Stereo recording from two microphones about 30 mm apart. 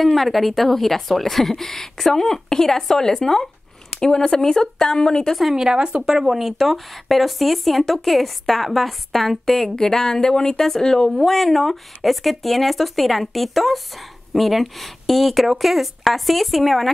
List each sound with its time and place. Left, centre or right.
0.0 s a woman's voice: centre; by 5.3 s left
5.6 s speech: right
6.0 s a woman's voice: centre
9.8 s speech: centre
11.1 s a woman's voice: centre